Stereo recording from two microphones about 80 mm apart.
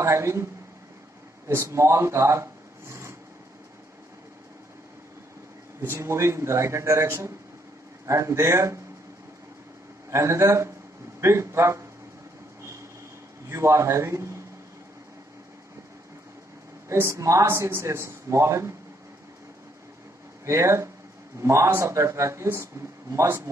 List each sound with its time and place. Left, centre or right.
0.0 s speech: right
1.5 s speech: right
6.0 s speech: right
10.1 s speech: right
13.5 s speech: right
16.9 s speech: right
20.4 s speech: right